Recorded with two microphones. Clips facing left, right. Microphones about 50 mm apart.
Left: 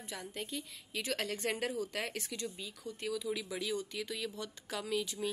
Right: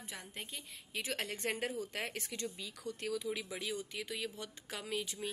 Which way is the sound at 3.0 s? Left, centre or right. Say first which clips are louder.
Left 1 dB; right.